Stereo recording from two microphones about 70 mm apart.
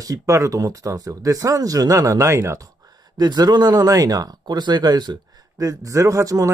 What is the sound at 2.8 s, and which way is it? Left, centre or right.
Speech, right.